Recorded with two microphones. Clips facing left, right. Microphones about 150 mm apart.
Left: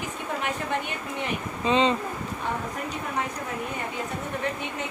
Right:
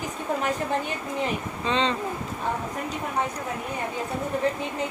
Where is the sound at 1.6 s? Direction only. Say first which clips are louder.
Left 4 dB; 10° left (ahead or behind).